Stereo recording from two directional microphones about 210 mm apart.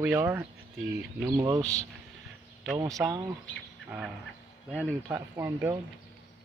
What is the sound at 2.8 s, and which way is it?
Speech, 15° right (ahead or behind).